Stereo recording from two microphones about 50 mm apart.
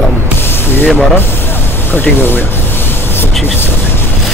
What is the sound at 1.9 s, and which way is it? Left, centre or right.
Speech, left.